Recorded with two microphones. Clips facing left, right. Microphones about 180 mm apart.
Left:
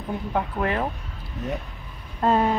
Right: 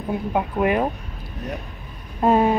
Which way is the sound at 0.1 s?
15° right (ahead or behind).